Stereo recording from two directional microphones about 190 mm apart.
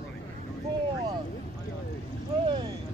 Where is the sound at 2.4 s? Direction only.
25° right (ahead or behind).